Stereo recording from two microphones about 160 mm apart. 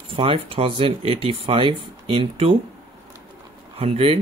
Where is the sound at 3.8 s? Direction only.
35° right (ahead or behind).